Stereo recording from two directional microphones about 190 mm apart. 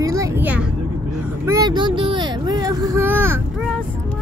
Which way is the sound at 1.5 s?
20° right (ahead or behind).